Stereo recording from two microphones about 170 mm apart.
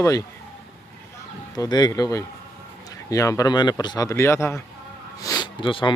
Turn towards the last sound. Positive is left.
turn(degrees=30)  # may be behind; listen again after turning